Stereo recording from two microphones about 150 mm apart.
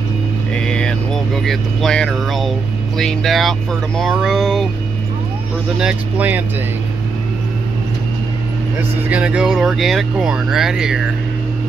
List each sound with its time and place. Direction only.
0.6 s vehicle: 5° left (ahead or behind)
2.0 s speech: centre (ahead or behind)
5.8 s speech: 10° right (ahead or behind)
9.1 s speech: 5° right (ahead or behind)